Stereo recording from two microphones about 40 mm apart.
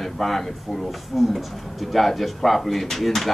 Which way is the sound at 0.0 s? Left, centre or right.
Centre.